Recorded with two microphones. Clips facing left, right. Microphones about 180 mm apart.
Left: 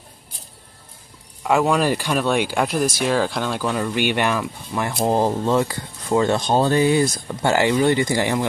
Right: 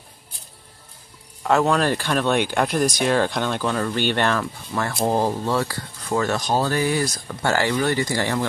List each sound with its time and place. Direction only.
1.4 s speech: 10° left (ahead or behind)